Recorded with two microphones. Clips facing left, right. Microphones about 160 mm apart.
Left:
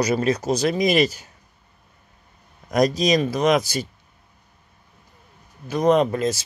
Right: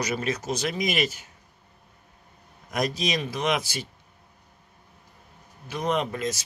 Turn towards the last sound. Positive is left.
turn(degrees=35)  # may be behind; listen again after turning